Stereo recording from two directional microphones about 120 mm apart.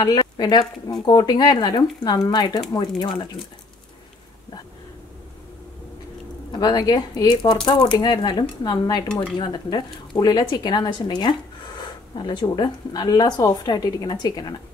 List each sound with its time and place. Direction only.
0.0 s speech: 35° left (ahead or behind)
6.6 s speech: 35° left (ahead or behind)